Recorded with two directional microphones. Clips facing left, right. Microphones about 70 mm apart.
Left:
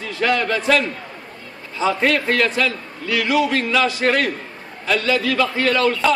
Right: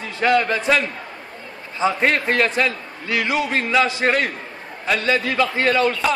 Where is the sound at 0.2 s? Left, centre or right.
Right.